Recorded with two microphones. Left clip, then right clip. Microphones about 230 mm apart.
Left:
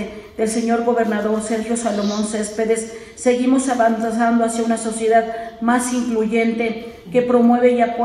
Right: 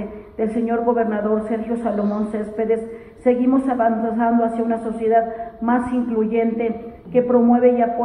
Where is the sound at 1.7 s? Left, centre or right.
Left.